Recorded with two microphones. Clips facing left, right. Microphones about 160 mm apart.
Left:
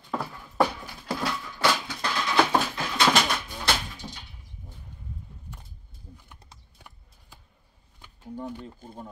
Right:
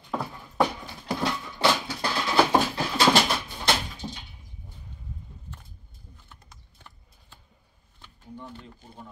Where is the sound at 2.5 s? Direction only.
30° right (ahead or behind).